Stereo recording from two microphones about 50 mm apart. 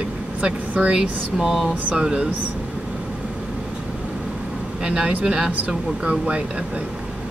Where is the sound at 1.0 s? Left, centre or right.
Centre.